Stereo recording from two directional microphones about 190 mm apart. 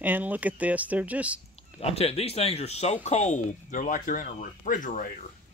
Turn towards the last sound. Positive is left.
turn(degrees=45)  # may be behind; listen again after turning